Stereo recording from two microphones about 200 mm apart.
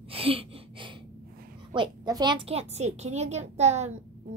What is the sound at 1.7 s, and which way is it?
A woman's voice, 20° right (ahead or behind).